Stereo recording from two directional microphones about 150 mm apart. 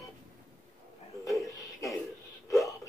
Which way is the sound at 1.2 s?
20° left (ahead or behind).